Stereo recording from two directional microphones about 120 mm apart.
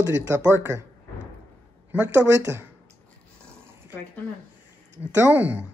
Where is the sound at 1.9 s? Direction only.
15° right (ahead or behind).